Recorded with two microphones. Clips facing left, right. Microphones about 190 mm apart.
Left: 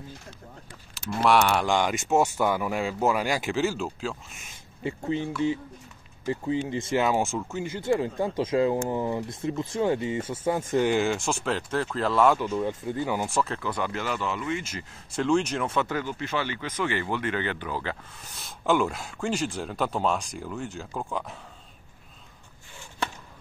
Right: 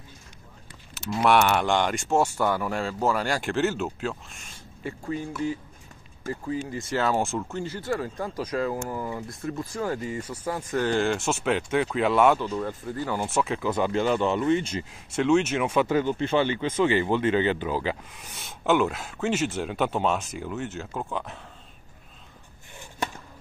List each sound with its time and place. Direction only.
0.9 s speech: 5° right (ahead or behind)
4.8 s speech: 25° left (ahead or behind)
10.9 s speech: 10° left (ahead or behind)
11.1 s speech: 5° right (ahead or behind)
12.4 s speech: 10° left (ahead or behind)
12.6 s speech: 20° left (ahead or behind)
13.3 s speech: 10° right (ahead or behind)
13.7 s speech: 20° right (ahead or behind)
15.0 s speech: 5° right (ahead or behind)
15.9 s speech: 20° right (ahead or behind); by 21.4 s centre (ahead or behind)